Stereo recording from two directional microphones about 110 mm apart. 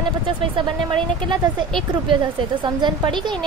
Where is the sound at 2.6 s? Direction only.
45° right (ahead or behind).